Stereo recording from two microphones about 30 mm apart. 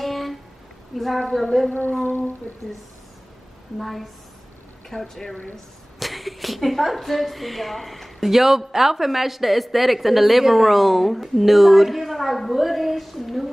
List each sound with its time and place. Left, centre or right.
0.0 s a sound: centre
0.9 s a woman's voice: centre
1.7 s a sound: left
3.7 s a woman's voice: centre
5.9 s a woman's voice: centre
8.2 s a man's voice: centre